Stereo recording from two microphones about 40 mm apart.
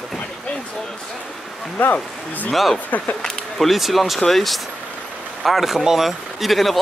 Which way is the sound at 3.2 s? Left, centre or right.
Centre.